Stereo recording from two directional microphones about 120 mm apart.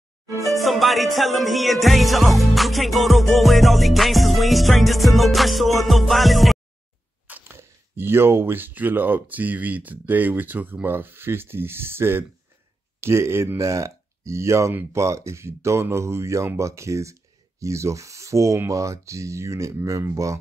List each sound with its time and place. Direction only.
0.5 s music: centre (ahead or behind)
7.2 s speech: 15° right (ahead or behind)